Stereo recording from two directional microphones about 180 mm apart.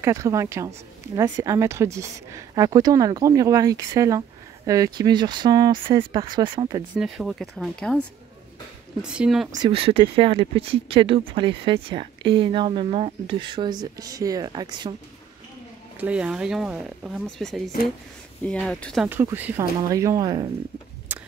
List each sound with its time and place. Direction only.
0.0 s speech: 15° right (ahead or behind)
7.0 s speech: centre (ahead or behind)
9.0 s speech: 5° right (ahead or behind)
9.5 s speech: 25° right (ahead or behind)
16.0 s speech: 5° right (ahead or behind)
19.0 s speech: 10° right (ahead or behind)
21.1 s a sound: 10° right (ahead or behind)